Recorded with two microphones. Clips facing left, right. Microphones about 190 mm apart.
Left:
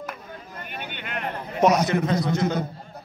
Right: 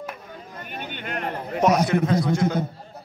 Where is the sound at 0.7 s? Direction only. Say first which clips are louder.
Right 4 dB; 45° right (ahead or behind).